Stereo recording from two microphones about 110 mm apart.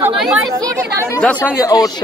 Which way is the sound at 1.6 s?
35° left (ahead or behind).